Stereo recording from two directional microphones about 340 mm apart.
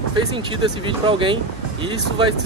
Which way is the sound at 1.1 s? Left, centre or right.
Centre.